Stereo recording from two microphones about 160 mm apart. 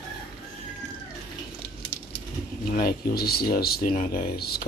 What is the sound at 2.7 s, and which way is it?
Speech, 75° left (ahead or behind).